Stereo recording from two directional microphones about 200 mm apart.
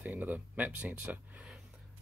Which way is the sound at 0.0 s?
10° right (ahead or behind).